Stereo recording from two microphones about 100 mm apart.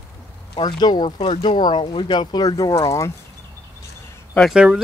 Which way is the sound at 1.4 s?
55° left (ahead or behind).